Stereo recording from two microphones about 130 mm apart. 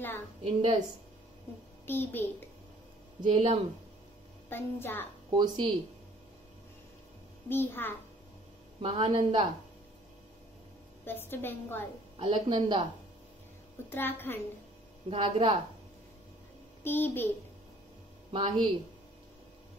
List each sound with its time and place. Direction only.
0.4 s a woman's voice: 50° right (ahead or behind)
1.9 s a woman's voice: 15° left (ahead or behind)
3.2 s speech: 55° right (ahead or behind)
4.5 s a woman's voice: 15° left (ahead or behind)
5.3 s a woman's voice: 35° right (ahead or behind)
7.4 s a woman's voice: 15° left (ahead or behind)
8.8 s a woman's voice: 45° right (ahead or behind)
11.1 s a woman's voice: 15° left (ahead or behind)
12.2 s a woman's voice: 40° right (ahead or behind)
13.8 s a woman's voice: 15° left (ahead or behind)
15.0 s a woman's voice: 45° right (ahead or behind)
16.8 s a woman's voice: 15° left (ahead or behind)
18.3 s a woman's voice: 40° right (ahead or behind)